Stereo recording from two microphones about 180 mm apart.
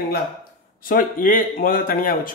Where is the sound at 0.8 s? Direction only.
50° left (ahead or behind).